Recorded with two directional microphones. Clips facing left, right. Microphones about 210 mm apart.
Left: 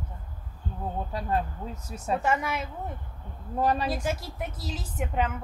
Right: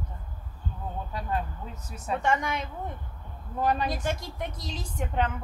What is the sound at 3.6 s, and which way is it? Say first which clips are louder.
Speech: left 1 dB; 35° left (ahead or behind).